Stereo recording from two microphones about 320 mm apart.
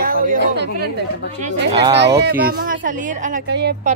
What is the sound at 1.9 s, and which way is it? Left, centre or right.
Speech, right.